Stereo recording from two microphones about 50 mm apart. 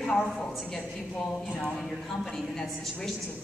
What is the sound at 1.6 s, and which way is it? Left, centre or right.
Speech, centre.